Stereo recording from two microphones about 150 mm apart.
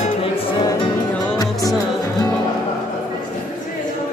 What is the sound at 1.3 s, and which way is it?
Music, 25° left (ahead or behind).